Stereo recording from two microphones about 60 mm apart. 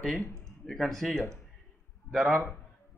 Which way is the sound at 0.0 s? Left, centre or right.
Centre.